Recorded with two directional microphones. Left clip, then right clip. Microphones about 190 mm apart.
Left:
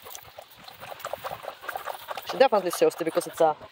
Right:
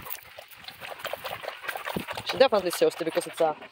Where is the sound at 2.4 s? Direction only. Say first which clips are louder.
Left 1 dB; centre (ahead or behind).